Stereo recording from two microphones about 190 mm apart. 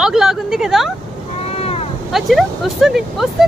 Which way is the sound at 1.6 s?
30° left (ahead or behind).